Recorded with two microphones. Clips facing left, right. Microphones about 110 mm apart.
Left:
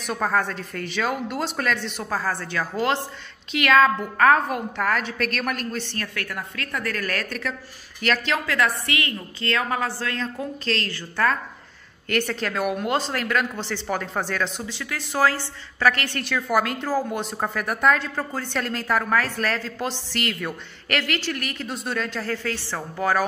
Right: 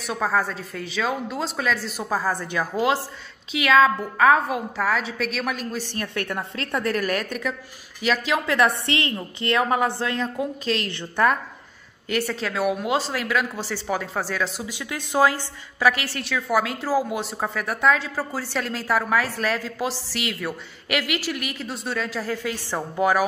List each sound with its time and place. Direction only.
0.0 s speech: centre (ahead or behind)
6.1 s a woman's voice: 25° right (ahead or behind); by 8.4 s 5° right (ahead or behind)
8.5 s a woman's voice: 25° right (ahead or behind)
12.1 s speech: centre (ahead or behind)